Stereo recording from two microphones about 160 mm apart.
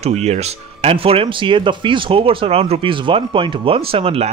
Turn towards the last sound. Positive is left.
turn(degrees=-35)  # may be behind; listen again after turning